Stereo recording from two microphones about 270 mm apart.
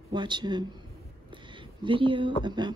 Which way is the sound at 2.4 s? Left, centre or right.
Centre.